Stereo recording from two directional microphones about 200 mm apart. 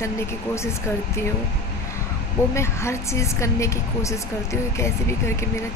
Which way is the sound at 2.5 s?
15° left (ahead or behind).